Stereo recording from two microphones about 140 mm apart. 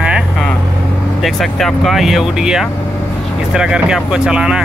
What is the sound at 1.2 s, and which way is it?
Speech, centre (ahead or behind).